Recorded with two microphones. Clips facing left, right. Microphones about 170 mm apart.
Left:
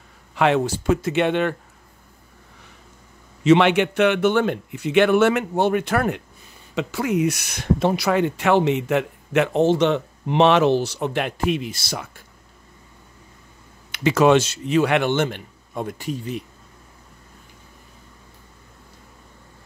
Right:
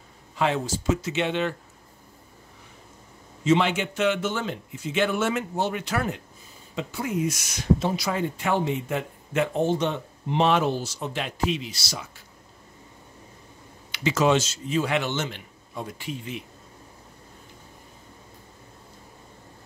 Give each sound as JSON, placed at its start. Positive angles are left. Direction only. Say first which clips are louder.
{"t": 0.4, "sound": "speech", "louder": "left 6 dB", "side_deg": 65}
{"t": 3.4, "sound": "speech", "louder": "left 7 dB", "side_deg": 70}
{"t": 6.7, "sound": "speech", "louder": "left 6 dB", "side_deg": 80}
{"t": 13.9, "sound": "speech", "louder": "left 6 dB", "side_deg": 55}